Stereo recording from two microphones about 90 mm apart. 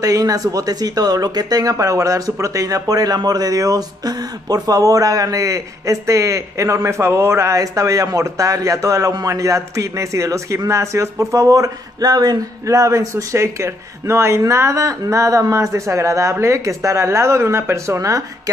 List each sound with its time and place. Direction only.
0.0 s speech: 40° right (ahead or behind)